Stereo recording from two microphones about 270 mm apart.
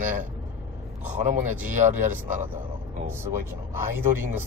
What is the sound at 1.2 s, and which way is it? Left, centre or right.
Speech, right.